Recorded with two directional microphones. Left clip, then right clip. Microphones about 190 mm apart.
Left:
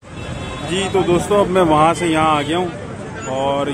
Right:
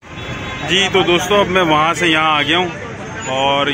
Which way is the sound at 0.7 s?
Centre (ahead or behind).